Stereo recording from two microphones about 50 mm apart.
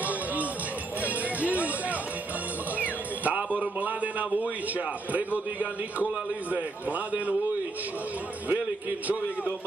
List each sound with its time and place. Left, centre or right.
1.0 s music: right
6.5 s a man's voice: right
8.5 s a man's voice: right